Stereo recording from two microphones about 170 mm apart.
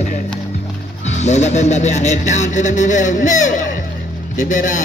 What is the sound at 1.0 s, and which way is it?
Speech, 40° left (ahead or behind).